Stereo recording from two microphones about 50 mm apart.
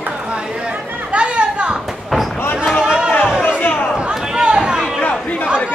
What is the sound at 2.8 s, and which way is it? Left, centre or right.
Chatter, centre.